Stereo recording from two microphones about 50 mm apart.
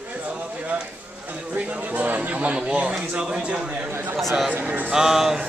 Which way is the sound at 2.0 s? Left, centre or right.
Right.